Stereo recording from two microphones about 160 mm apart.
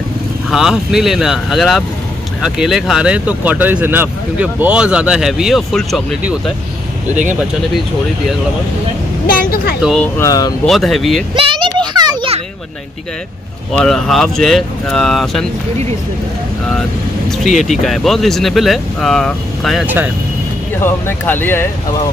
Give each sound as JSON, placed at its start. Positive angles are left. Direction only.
{"t": 0.5, "sound": "speech", "side_deg": 0}
{"t": 9.3, "sound": "speech", "side_deg": 65}
{"t": 9.8, "sound": "speech", "side_deg": 0}
{"t": 10.1, "sound": "speech", "side_deg": 20}
{"t": 10.6, "sound": "speech", "side_deg": 0}
{"t": 11.3, "sound": "a sound", "side_deg": -35}
{"t": 13.7, "sound": "speech", "side_deg": 5}
{"t": 17.3, "sound": "speech", "side_deg": 0}
{"t": 20.8, "sound": "speech", "side_deg": 10}